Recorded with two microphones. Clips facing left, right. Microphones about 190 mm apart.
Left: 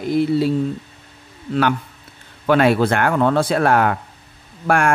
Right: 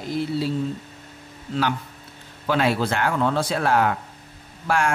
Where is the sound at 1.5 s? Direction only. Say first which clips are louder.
Left 6 dB; 60° left (ahead or behind).